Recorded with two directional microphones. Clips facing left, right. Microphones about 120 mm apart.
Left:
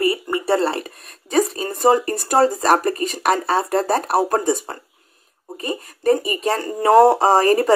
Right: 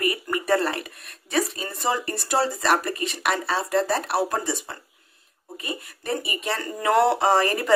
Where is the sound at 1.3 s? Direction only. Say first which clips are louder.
Left 7 dB; 45° left (ahead or behind).